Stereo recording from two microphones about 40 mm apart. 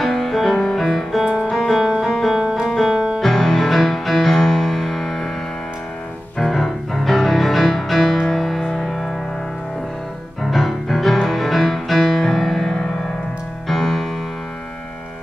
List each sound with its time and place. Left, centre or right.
0.0 s music: centre
1.2 s music: centre
1.6 s music: centre
2.4 s music: right
3.2 s music: centre
6.4 s music: centre
10.4 s music: centre